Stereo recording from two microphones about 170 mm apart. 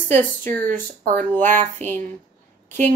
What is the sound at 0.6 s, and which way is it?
Speech, 50° right (ahead or behind).